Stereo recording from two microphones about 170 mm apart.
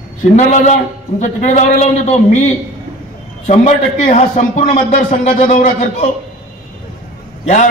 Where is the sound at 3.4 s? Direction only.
45° left (ahead or behind).